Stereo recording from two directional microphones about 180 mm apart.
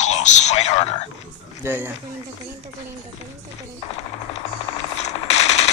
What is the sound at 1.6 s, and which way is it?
Speech, 10° right (ahead or behind).